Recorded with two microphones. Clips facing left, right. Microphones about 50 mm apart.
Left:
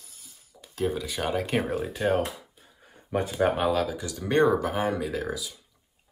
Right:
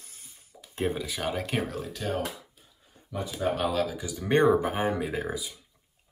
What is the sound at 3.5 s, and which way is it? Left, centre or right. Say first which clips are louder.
Speech: left 2 dB; centre.